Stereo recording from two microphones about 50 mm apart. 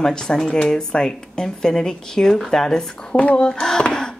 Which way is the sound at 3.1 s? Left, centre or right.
Left.